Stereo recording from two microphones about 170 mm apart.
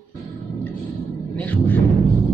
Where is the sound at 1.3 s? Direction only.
10° left (ahead or behind).